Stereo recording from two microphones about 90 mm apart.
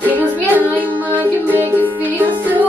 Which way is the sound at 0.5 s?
20° right (ahead or behind).